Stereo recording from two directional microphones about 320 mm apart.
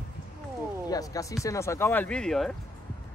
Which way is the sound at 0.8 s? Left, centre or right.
Centre.